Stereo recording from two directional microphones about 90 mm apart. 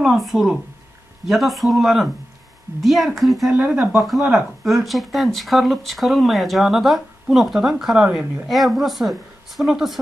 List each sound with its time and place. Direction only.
0.0 s speech: centre (ahead or behind)
3.5 s speech: 20° right (ahead or behind)
3.9 s speech: centre (ahead or behind)